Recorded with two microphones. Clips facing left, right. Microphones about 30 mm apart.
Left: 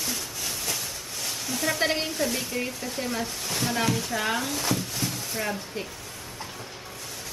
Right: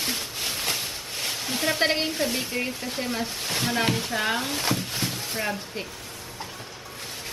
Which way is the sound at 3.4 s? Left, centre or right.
Right.